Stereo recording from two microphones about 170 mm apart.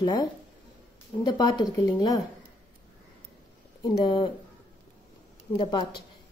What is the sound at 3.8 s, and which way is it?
Speech, 25° left (ahead or behind).